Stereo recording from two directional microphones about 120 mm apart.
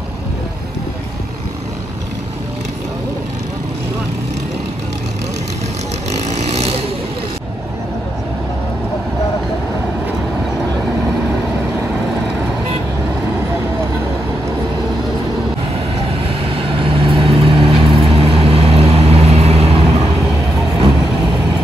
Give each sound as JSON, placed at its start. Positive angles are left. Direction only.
{"t": 6.1, "sound": "vehicle", "side_deg": -70}
{"t": 16.6, "sound": "vehicle", "side_deg": -50}